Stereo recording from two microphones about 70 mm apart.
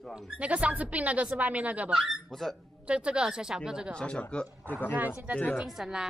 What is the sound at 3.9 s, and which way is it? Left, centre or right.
Speech, centre.